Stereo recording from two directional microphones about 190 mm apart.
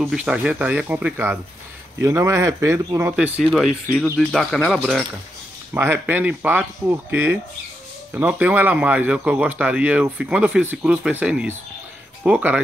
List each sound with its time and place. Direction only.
0.0 s speech: 5° right (ahead or behind)
3.4 s speech: centre (ahead or behind)
5.8 s speech: 10° right (ahead or behind)